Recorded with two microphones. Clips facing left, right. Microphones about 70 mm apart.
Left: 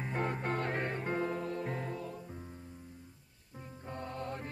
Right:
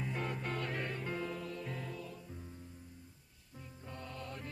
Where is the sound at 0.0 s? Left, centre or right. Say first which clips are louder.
Left 4 dB; left.